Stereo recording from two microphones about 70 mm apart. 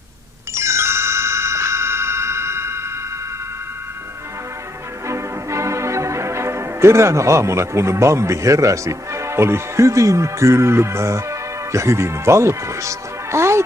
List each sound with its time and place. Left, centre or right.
0.6 s music: right
5.0 s music: right